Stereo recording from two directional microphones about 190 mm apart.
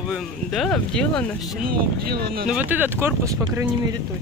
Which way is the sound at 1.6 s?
55° right (ahead or behind).